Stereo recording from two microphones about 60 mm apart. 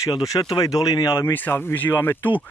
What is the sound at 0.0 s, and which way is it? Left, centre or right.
Speech, left.